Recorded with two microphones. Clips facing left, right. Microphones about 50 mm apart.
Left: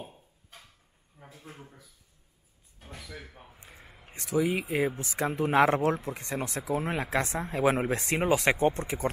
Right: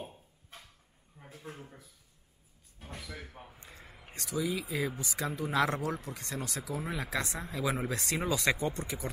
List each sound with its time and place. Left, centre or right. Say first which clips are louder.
1.2 s a sound: left 2 dB; centre
2.8 s door: even; centre
3.3 s a sound: right 1 dB; centre
4.3 s speech: left 6 dB; left
6.1 s speech: left 5 dB; left
6.7 s speech: left 7 dB; left